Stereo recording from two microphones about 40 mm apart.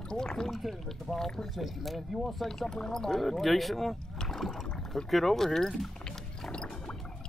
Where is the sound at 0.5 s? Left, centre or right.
Centre.